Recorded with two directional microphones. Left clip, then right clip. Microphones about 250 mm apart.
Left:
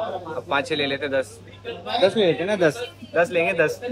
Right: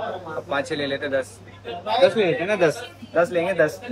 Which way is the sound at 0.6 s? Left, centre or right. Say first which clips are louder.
Left 1 dB; centre.